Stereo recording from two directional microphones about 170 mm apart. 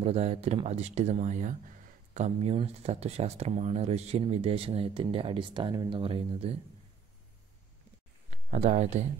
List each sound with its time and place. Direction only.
0.0 s speech: 40° right (ahead or behind)
8.5 s speech: 40° right (ahead or behind)